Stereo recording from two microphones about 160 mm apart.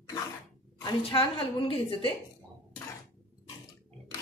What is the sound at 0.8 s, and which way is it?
A woman's voice, 30° left (ahead or behind).